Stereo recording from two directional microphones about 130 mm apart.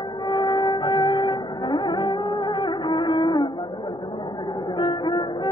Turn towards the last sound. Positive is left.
turn(degrees=35)  # may be behind; listen again after turning